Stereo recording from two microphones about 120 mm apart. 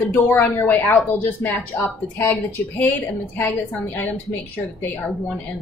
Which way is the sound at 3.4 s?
15° left (ahead or behind).